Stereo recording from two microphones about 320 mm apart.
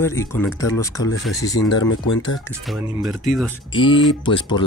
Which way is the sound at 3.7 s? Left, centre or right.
Centre.